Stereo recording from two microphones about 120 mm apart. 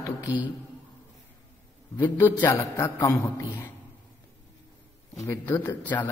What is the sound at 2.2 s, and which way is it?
A man's voice, 15° left (ahead or behind).